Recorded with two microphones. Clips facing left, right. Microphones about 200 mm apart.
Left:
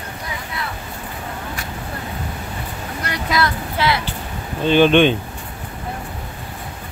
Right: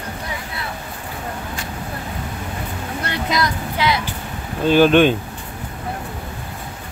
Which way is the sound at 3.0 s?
25° right (ahead or behind).